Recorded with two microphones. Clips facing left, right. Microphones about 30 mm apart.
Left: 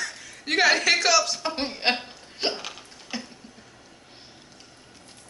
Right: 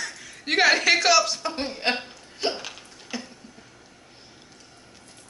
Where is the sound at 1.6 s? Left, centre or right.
Centre.